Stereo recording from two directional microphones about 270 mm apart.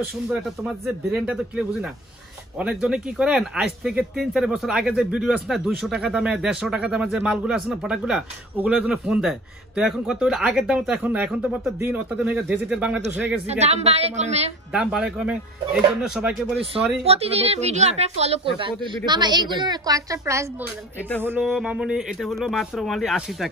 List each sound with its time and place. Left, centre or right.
0.8 s a woman's voice: centre
13.5 s a woman's voice: right
14.7 s speech: centre
16.5 s a woman's voice: right; by 23.5 s centre